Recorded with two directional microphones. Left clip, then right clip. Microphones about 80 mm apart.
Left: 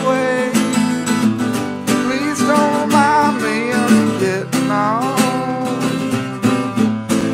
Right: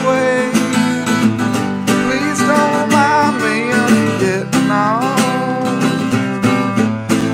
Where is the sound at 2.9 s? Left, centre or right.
Centre.